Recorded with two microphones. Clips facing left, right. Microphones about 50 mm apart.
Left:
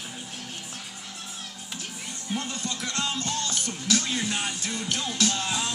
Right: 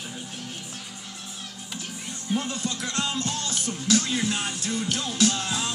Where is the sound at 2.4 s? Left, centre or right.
Centre.